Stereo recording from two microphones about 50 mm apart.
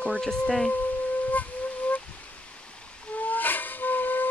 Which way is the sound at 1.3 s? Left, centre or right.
Left.